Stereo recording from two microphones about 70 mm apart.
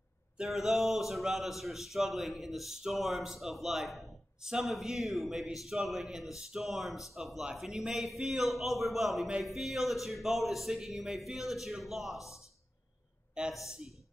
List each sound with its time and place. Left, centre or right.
0.5 s a man's voice: centre
12.2 s speech: left
13.3 s speech: centre